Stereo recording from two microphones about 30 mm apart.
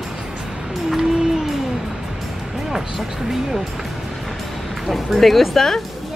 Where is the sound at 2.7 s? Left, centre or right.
Centre.